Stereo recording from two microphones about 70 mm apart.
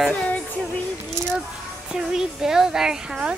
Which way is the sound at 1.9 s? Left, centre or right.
Centre.